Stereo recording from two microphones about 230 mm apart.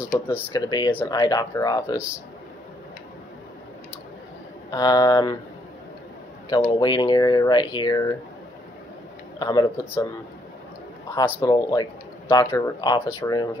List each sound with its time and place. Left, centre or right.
0.5 s speech: centre
4.6 s speech: centre
6.5 s speech: centre
9.4 s speech: centre
11.1 s speech: centre